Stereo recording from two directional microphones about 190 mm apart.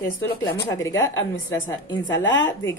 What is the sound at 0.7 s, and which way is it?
Speech, 15° left (ahead or behind).